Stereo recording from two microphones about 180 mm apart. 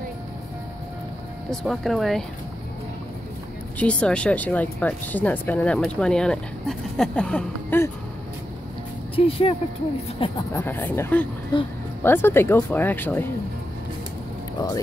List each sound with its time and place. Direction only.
1.5 s speech: centre (ahead or behind)
3.7 s speech: 5° left (ahead or behind)
9.1 s speech: 30° left (ahead or behind)
10.5 s speech: 10° left (ahead or behind)
11.5 s speech: 25° left (ahead or behind)
12.0 s speech: 10° left (ahead or behind)